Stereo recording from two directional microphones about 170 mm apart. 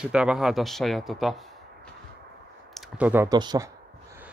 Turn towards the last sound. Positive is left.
turn(degrees=-25)  # may be behind; listen again after turning